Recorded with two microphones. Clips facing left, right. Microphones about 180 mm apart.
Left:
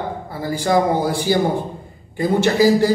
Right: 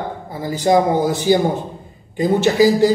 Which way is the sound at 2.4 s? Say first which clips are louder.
Right 2 dB; 15° right (ahead or behind).